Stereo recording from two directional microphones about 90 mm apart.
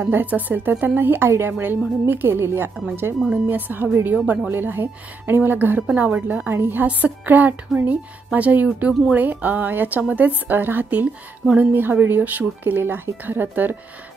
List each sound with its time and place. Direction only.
0.0 s a woman's voice: 20° right (ahead or behind)